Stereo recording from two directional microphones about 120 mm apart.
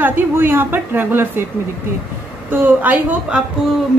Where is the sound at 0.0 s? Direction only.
20° right (ahead or behind).